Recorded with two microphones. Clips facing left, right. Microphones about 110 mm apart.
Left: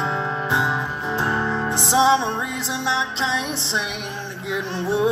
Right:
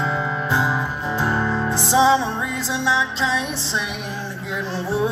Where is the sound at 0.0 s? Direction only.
25° left (ahead or behind).